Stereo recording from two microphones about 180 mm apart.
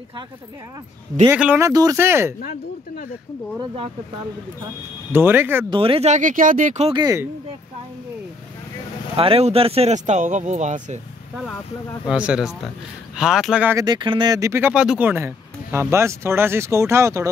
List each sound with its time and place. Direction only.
1.3 s speech: 10° right (ahead or behind)
5.1 s speech: 10° right (ahead or behind)
5.7 s speech: 30° right (ahead or behind)
6.9 s speech: 20° right (ahead or behind)
9.1 s speech: 30° right (ahead or behind)
12.1 s speech: 5° right (ahead or behind)
13.7 s speech: 25° right (ahead or behind)